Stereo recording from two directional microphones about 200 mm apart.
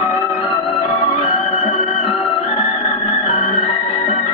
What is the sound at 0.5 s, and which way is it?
Music, 30° left (ahead or behind).